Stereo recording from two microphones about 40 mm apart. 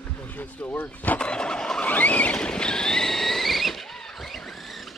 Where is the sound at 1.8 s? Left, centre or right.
Left.